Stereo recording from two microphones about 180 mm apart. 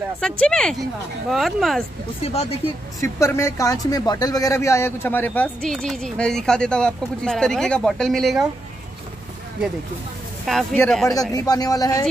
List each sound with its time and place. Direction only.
0.2 s speech: 5° left (ahead or behind)
2.2 s speech: 35° left (ahead or behind)
3.0 s speech: 15° left (ahead or behind); by 8.5 s centre (ahead or behind)
10.4 s speech: centre (ahead or behind)
11.1 s speech: 20° left (ahead or behind)